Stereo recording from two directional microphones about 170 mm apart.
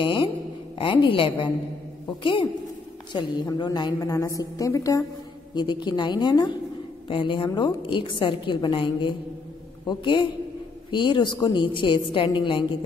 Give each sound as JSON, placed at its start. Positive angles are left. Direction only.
{"t": 0.0, "sound": "a sound", "side_deg": 30}
{"t": 0.7, "sound": "a woman's voice", "side_deg": 30}
{"t": 3.1, "sound": "a woman's voice", "side_deg": 25}